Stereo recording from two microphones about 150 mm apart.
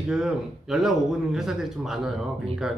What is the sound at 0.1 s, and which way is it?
Speech, 5° right (ahead or behind).